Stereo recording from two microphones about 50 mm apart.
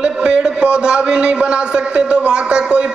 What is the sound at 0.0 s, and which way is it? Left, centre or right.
A man's voice, centre.